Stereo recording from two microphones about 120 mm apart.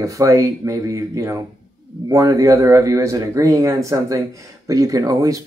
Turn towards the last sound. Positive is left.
turn(degrees=-30)  # may be behind; listen again after turning